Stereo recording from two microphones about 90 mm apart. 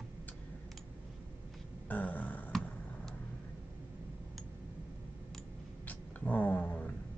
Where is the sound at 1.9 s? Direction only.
20° left (ahead or behind).